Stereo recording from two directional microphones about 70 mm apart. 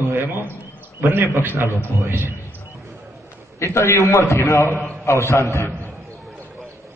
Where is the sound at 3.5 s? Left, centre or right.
Left.